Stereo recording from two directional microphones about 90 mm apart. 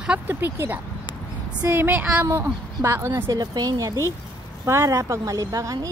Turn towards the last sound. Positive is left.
turn(degrees=-40)  # may be behind; listen again after turning